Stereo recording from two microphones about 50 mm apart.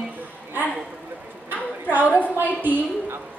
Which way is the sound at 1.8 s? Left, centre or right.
Right.